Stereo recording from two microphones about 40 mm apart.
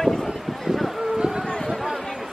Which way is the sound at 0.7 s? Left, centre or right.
Centre.